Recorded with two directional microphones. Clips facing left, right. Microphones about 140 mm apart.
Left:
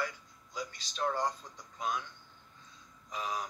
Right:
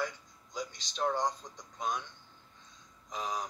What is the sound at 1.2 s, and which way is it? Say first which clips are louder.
Speech: right 1 dB; 15° right (ahead or behind).